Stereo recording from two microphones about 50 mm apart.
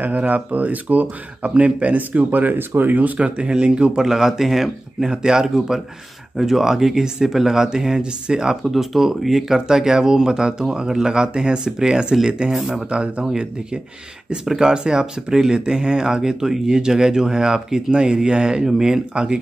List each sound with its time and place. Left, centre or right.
0.0 s speech: right
3.2 s speech: right
4.0 s speech: centre
14.3 s speech: centre